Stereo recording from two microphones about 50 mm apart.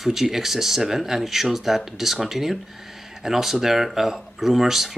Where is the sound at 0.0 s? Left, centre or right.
Centre.